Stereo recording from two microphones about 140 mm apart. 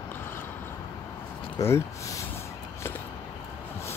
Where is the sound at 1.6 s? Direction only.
20° left (ahead or behind).